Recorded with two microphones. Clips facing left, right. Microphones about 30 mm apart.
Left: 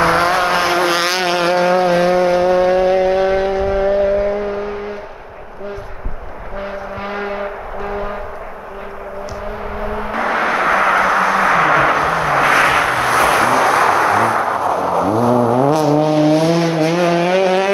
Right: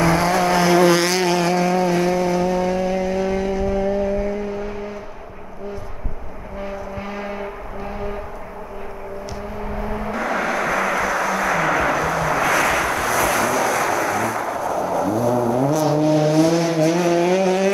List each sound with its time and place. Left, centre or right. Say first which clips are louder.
0.0 s vehicle: left 4 dB; left
6.6 s vehicle: left 4 dB; left
9.8 s vehicle: left 4 dB; left